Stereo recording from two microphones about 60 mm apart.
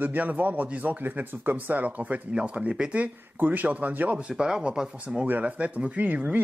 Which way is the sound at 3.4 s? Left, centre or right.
Right.